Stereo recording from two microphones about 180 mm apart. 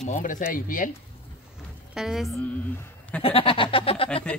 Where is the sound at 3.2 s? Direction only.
30° left (ahead or behind).